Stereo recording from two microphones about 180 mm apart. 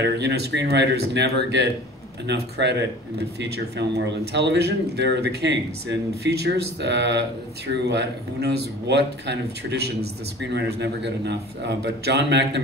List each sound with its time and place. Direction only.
0.0 s speech: 70° right (ahead or behind)